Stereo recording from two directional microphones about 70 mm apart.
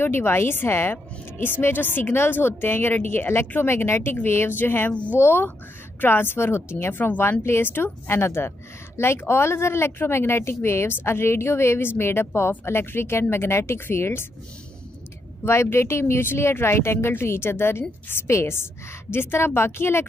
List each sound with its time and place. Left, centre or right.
0.0 s speech: left
15.4 s speech: left